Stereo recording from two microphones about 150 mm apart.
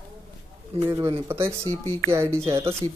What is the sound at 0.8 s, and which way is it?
Speech, 20° right (ahead or behind).